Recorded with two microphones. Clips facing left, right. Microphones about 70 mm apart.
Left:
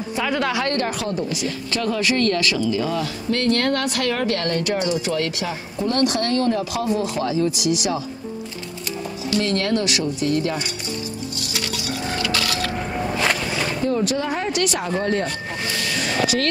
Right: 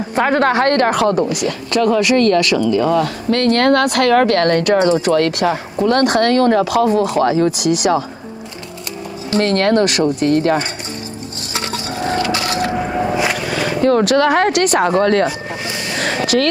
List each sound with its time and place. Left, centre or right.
0.1 s a woman's voice: right
4.7 s speech: right
5.0 s speech: right
9.4 s a woman's voice: right
11.5 s a sound: right
12.8 s vehicle: right
13.5 s speech: right
14.6 s speech: right
15.7 s a sound: right
16.0 s a sound: right